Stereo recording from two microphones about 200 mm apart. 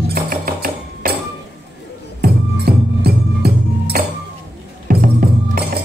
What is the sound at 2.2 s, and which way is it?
Music, 50° right (ahead or behind).